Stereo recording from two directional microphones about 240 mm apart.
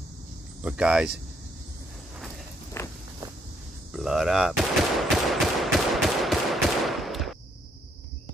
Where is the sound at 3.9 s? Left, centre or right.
Centre.